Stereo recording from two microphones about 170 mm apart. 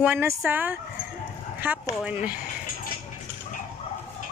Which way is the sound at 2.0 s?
10° right (ahead or behind).